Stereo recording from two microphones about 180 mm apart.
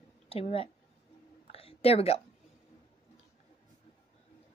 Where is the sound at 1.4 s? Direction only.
35° left (ahead or behind).